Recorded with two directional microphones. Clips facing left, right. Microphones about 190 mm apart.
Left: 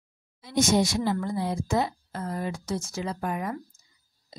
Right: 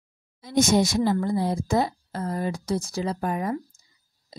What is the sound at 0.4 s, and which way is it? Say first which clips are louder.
Speech: right 3 dB; 45° right (ahead or behind).